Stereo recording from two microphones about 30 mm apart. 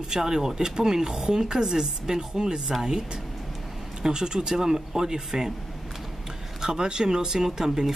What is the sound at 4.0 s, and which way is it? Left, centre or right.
Speech, right.